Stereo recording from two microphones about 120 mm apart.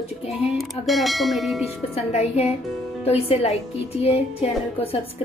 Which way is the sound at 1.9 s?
65° left (ahead or behind).